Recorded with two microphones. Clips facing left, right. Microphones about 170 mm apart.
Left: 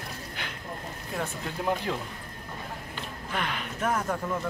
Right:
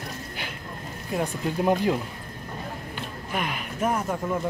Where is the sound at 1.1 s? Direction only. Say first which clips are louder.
Right 7 dB; 20° right (ahead or behind).